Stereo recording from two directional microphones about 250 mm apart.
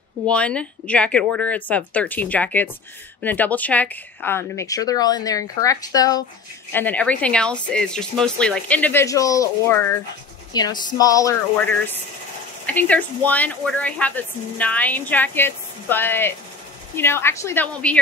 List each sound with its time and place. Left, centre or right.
0.3 s speech: centre